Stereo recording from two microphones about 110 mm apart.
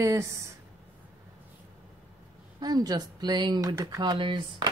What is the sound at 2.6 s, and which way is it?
Speech, 35° right (ahead or behind).